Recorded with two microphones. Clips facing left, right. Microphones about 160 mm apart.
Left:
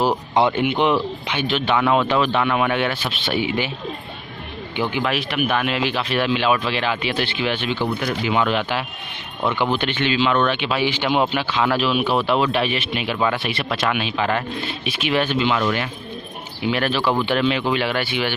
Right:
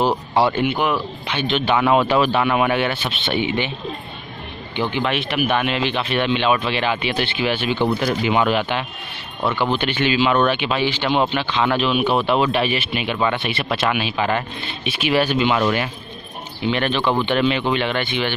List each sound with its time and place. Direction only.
0.3 s speech: 15° left (ahead or behind)
1.5 s speech: 5° right (ahead or behind)
4.7 s speech: 10° left (ahead or behind)
7.8 s speech: 20° right (ahead or behind)
8.5 s speech: centre (ahead or behind)
9.5 s speech: 15° left (ahead or behind)
9.8 s speech: 10° right (ahead or behind)
10.8 s speech: 10° left (ahead or behind); by 15.6 s 15° right (ahead or behind)
16.6 s speech: 5° left (ahead or behind)